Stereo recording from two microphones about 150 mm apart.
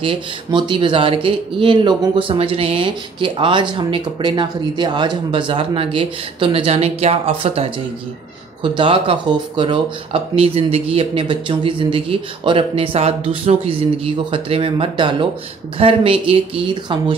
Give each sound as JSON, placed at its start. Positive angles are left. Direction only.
{"t": 0.0, "sound": "speech", "side_deg": -35}